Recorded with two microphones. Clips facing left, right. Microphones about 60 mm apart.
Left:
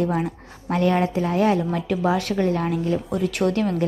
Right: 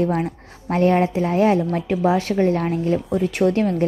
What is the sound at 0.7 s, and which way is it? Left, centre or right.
Speech, right.